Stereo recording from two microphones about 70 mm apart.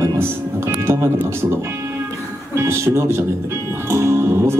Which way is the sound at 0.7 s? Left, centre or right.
Right.